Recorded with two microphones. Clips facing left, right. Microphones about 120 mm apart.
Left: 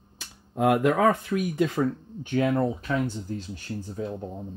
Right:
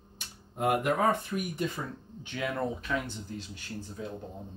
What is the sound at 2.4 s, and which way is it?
Speech, 30° left (ahead or behind).